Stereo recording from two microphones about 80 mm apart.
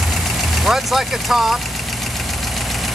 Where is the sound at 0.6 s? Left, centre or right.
Centre.